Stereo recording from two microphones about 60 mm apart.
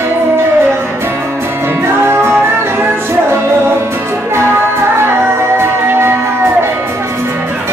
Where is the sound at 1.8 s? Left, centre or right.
Right.